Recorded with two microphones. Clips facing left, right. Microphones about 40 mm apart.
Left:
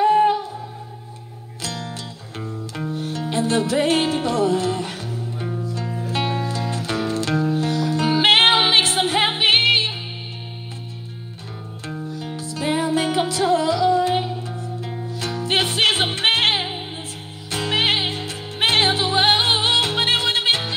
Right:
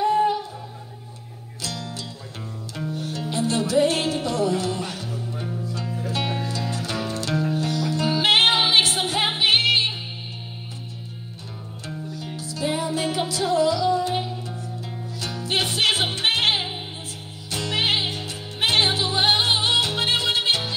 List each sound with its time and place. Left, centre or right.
0.0 s music: left
1.6 s music: left
11.8 s music: left